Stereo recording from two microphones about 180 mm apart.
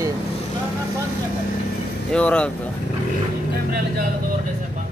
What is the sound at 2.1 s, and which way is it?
Speech, 5° left (ahead or behind).